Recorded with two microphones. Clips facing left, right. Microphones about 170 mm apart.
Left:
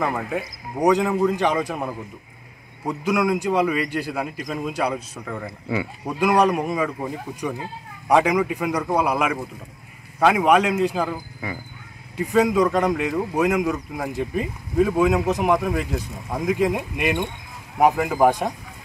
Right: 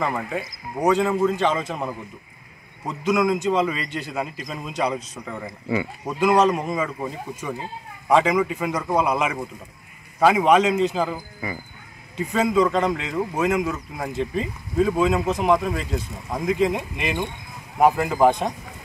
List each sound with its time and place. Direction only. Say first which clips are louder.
0.0 s speech: left 1 dB; 5° left (ahead or behind)
5.2 s speech: left 1 dB; 5° right (ahead or behind)
10.1 s a man's voice: right 1 dB; 5° right (ahead or behind)
10.4 s speech: even; 5° left (ahead or behind)
12.7 s speech: left 2 dB; 10° left (ahead or behind)